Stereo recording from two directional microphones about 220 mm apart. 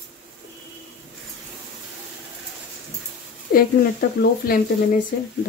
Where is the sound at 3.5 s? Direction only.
40° left (ahead or behind).